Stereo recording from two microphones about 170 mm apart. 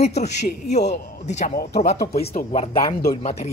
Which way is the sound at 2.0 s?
65° left (ahead or behind).